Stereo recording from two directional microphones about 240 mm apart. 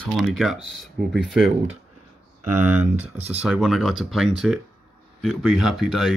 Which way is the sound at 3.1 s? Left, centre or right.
Right.